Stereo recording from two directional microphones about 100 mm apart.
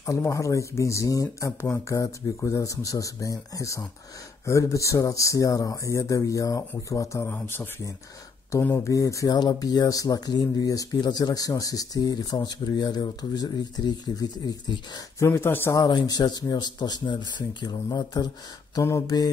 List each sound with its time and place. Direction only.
0.0 s speech: 30° left (ahead or behind)
8.7 s speech: 35° left (ahead or behind)
15.1 s speech: 25° left (ahead or behind)
15.7 s speech: 45° left (ahead or behind)
18.8 s speech: 30° left (ahead or behind)
19.0 s speech: 45° left (ahead or behind)